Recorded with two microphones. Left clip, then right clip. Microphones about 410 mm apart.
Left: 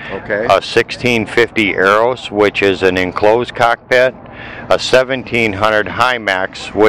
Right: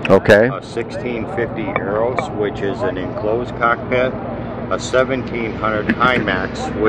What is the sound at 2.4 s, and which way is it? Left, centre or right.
Speech, left.